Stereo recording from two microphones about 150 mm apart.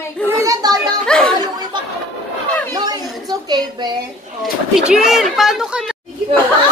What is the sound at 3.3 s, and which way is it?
Speech, 25° right (ahead or behind).